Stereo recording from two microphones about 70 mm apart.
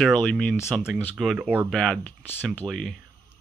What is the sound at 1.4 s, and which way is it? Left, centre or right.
Speech, right.